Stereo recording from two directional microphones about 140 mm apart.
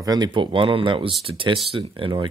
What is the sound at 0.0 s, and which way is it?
Speech, 30° right (ahead or behind).